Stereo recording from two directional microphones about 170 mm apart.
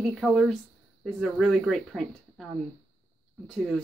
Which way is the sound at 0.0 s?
Centre (ahead or behind).